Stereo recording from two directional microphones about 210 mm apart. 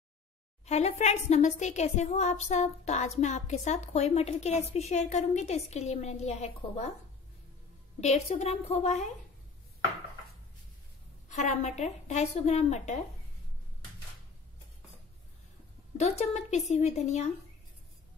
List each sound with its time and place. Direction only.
0.7 s a woman's voice: 30° left (ahead or behind)
8.0 s a woman's voice: 35° left (ahead or behind)
11.2 s a woman's voice: 35° left (ahead or behind)
16.0 s a woman's voice: 35° left (ahead or behind)